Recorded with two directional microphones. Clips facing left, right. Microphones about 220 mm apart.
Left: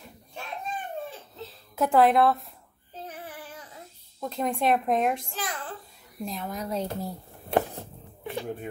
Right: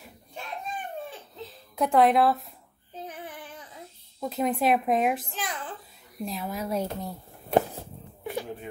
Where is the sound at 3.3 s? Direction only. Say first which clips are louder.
Even; 5° left (ahead or behind).